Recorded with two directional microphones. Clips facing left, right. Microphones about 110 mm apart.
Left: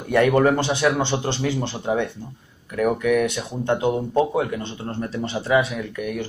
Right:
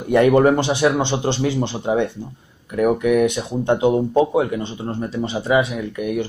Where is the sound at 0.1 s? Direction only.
15° right (ahead or behind).